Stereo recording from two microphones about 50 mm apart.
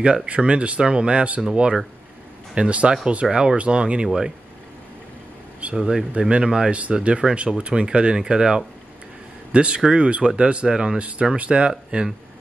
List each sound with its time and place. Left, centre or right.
0.0 s speech: centre
5.8 s speech: centre
6.1 s speech: right